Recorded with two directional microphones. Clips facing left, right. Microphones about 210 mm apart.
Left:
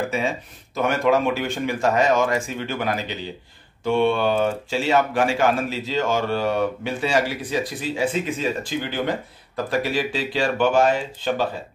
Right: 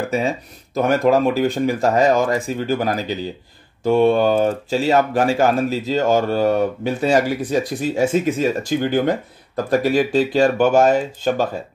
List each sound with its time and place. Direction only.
0.7 s speech: 40° right (ahead or behind)